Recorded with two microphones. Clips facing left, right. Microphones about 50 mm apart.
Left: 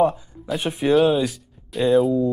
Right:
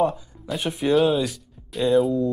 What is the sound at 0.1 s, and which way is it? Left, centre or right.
Speech, centre.